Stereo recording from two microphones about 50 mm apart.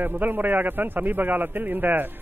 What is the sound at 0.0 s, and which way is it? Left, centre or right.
A man's voice, right.